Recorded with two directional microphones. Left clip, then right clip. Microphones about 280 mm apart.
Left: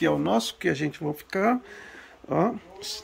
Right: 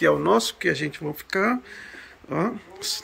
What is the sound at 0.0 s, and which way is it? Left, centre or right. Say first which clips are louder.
Speech: right 5 dB; centre.